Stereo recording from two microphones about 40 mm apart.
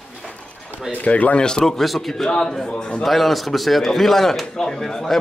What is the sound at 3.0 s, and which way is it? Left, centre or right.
Speech, centre.